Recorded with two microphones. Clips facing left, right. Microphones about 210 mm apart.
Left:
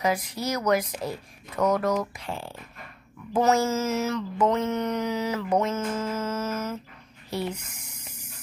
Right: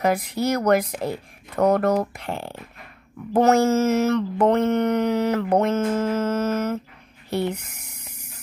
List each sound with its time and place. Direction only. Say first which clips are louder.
0.0 s mantra: right 5 dB; 60° right (ahead or behind)
7.2 s spray: right 6 dB; 60° right (ahead or behind)